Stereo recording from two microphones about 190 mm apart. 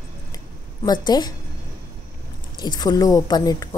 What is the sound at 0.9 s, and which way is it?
Speech, 20° left (ahead or behind).